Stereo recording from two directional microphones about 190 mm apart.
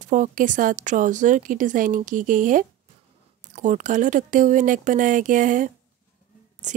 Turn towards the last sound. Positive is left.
turn(degrees=-40)  # may be behind; listen again after turning